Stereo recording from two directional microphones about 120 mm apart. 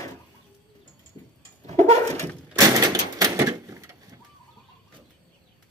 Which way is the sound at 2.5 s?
30° right (ahead or behind).